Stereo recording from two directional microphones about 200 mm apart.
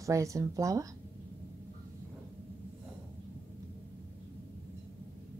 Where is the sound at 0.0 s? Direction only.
15° right (ahead or behind).